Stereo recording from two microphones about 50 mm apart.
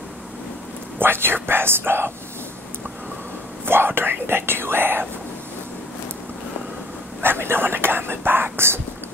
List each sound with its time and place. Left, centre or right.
0.9 s a sound: right
3.6 s speech: right
7.2 s whispering: right